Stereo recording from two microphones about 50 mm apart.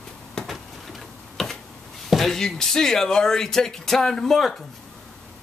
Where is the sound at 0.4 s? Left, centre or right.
Centre.